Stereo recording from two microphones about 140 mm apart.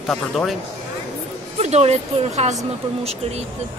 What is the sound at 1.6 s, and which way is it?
Speech, 50° right (ahead or behind).